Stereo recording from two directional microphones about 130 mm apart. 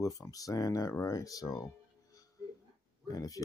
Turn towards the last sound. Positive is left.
turn(degrees=30)  # may be behind; listen again after turning